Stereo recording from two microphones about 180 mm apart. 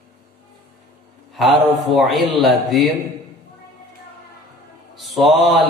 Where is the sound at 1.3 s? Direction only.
Centre (ahead or behind).